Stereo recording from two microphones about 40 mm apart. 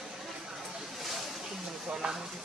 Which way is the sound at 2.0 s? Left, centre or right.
Right.